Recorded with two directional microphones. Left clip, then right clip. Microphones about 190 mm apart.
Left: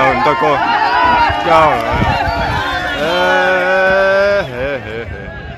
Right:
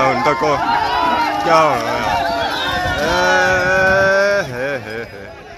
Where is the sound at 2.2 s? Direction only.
45° right (ahead or behind).